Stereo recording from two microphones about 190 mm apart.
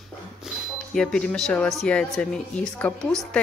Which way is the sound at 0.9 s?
5° left (ahead or behind).